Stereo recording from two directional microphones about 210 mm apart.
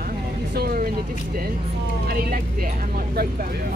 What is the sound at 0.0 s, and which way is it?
Vehicle, 45° right (ahead or behind).